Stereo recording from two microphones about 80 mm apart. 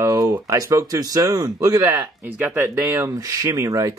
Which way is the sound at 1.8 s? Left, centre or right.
Right.